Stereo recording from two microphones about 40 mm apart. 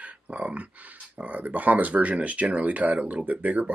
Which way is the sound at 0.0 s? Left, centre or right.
Right.